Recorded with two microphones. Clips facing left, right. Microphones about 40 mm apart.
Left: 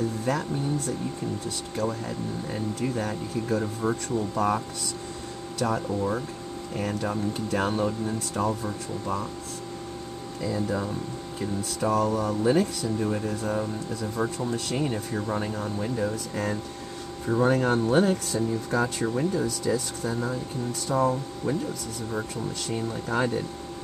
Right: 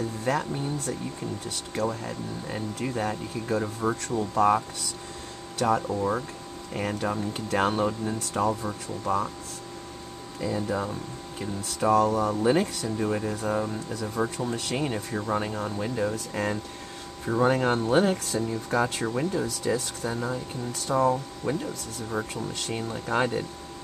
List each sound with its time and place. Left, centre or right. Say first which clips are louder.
1.9 s speech: left 1 dB; centre
7.3 s speech: right 4 dB; right
10.4 s speech: even; centre
20.9 s speech: right 1 dB; centre
23.1 s speech: right 1 dB; centre